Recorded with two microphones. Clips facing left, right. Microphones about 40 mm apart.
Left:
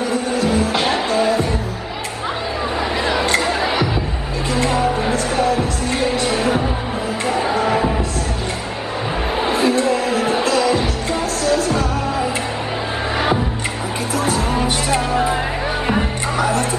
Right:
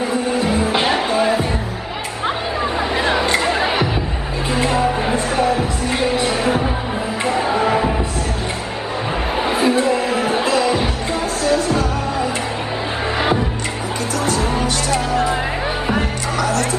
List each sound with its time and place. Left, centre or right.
0.4 s music: right
3.2 s music: centre
7.6 s a sound: centre
9.5 s music: centre
14.1 s music: centre
16.3 s music: left